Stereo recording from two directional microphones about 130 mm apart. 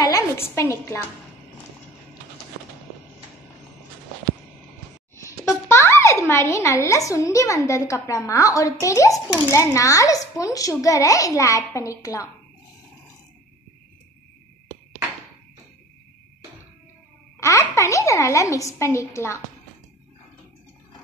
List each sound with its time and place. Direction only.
0.6 s a child's voice: 20° left (ahead or behind)
5.1 s a child's voice: 20° left (ahead or behind)
17.4 s a woman's voice: 25° left (ahead or behind)